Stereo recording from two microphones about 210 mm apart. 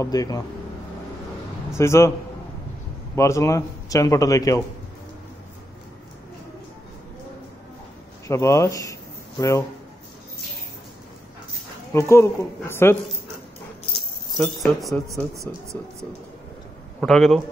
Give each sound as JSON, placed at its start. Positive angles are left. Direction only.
{"t": 0.0, "sound": "speech", "side_deg": 15}
{"t": 1.7, "sound": "speech", "side_deg": 15}
{"t": 3.2, "sound": "speech", "side_deg": 15}
{"t": 8.3, "sound": "speech", "side_deg": 15}
{"t": 11.9, "sound": "speech", "side_deg": 15}
{"t": 14.3, "sound": "speech", "side_deg": 0}
{"t": 17.0, "sound": "speech", "side_deg": 0}